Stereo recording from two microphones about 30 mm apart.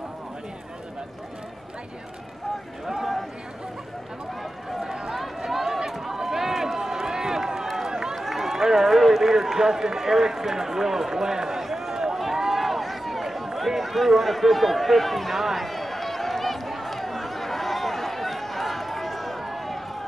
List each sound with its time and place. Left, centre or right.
4.8 s run: right
5.1 s run: centre
8.2 s a man's voice: centre
11.6 s run: centre